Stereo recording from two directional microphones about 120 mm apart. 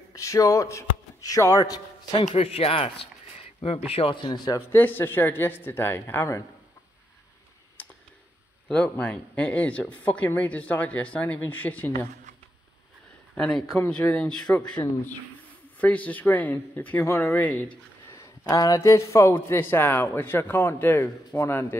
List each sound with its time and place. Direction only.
0.1 s a man's voice: 25° left (ahead or behind)
2.2 s speech: 60° left (ahead or behind)
3.9 s speech: 45° left (ahead or behind)
4.6 s speech: 15° left (ahead or behind)
7.8 s clicking: 15° left (ahead or behind)
8.6 s speech: 10° left (ahead or behind)
13.3 s a man's voice: 5° left (ahead or behind)
15.8 s speech: 10° left (ahead or behind)
18.1 s a man's voice: 30° left (ahead or behind)